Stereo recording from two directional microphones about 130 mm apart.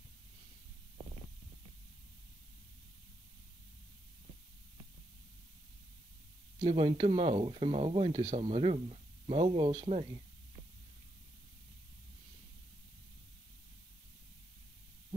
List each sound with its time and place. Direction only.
6.6 s speech: 55° right (ahead or behind)
7.0 s speech: 45° right (ahead or behind)